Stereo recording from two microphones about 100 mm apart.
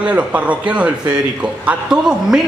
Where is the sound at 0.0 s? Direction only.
15° right (ahead or behind).